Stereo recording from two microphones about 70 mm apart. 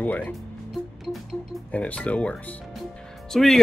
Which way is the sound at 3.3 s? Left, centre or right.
Centre.